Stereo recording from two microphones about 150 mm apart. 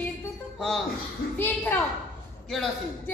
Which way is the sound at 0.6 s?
Centre (ahead or behind).